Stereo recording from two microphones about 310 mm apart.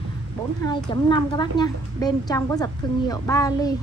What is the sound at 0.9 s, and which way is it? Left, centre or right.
A woman's voice, centre.